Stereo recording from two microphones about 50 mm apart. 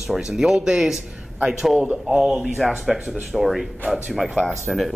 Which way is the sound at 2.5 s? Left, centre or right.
Centre.